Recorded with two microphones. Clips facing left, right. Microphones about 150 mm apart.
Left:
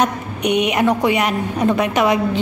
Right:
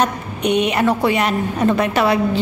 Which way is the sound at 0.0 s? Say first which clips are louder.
Even; 10° left (ahead or behind).